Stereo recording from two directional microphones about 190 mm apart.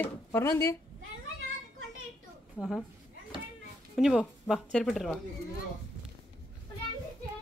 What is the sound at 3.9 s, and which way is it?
Speech, centre (ahead or behind).